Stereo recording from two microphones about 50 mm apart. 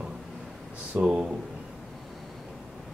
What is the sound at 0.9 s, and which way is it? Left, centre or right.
Speech, right.